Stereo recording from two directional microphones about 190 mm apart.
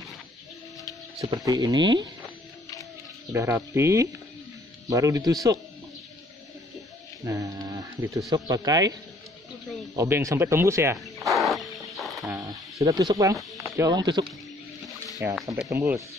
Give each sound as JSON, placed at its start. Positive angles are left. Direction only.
{"t": 1.2, "sound": "speech", "side_deg": -20}
{"t": 3.3, "sound": "speech", "side_deg": -15}
{"t": 7.2, "sound": "a sound", "side_deg": -20}
{"t": 8.3, "sound": "speech", "side_deg": -20}
{"t": 9.9, "sound": "speech", "side_deg": -15}
{"t": 11.1, "sound": "music", "side_deg": 0}
{"t": 12.3, "sound": "speech", "side_deg": -15}
{"t": 15.7, "sound": "speech", "side_deg": -10}